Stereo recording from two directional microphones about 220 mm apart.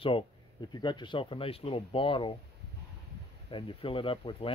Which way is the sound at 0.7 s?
20° left (ahead or behind).